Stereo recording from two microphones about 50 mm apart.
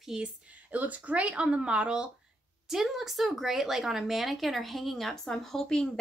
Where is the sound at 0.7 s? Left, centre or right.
Right.